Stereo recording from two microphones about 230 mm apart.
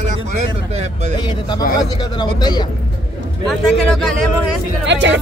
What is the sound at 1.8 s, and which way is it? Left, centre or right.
Speech, centre.